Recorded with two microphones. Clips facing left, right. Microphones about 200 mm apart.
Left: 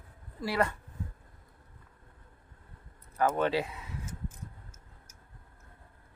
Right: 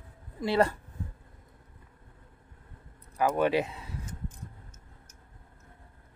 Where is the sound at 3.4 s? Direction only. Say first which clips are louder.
Right 3 dB; 20° right (ahead or behind).